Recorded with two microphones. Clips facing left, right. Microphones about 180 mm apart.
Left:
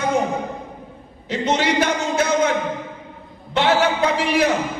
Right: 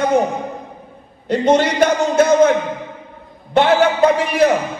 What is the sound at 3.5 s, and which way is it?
Speech, 50° right (ahead or behind).